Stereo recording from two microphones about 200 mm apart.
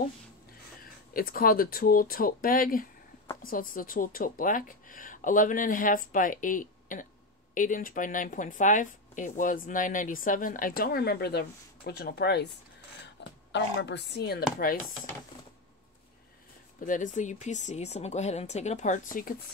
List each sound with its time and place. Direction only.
1.1 s speech: 45° left (ahead or behind)
16.8 s speech: 40° left (ahead or behind)